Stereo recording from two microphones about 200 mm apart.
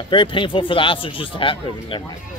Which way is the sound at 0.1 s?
25° left (ahead or behind).